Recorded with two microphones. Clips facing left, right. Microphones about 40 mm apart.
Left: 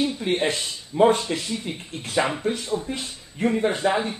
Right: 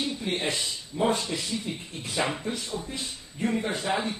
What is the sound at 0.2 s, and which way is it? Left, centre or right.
A man's voice, left.